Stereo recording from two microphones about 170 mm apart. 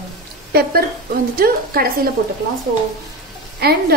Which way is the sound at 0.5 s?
65° right (ahead or behind).